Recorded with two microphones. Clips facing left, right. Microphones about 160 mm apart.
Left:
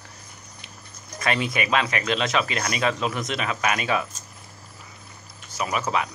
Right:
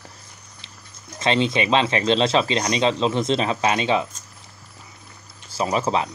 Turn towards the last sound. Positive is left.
turn(degrees=-30)  # may be behind; listen again after turning